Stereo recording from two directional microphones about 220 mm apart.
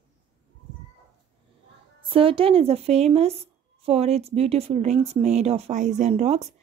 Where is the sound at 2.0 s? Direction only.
25° right (ahead or behind).